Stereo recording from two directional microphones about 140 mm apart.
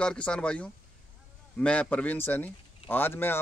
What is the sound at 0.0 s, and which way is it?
Speech, 5° left (ahead or behind).